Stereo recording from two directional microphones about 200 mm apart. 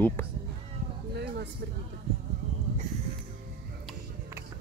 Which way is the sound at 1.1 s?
55° right (ahead or behind).